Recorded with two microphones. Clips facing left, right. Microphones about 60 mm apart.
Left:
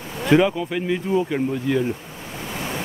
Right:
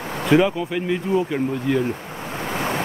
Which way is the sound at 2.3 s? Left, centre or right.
Right.